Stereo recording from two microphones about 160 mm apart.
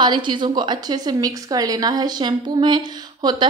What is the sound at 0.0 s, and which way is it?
A woman's voice, 30° right (ahead or behind).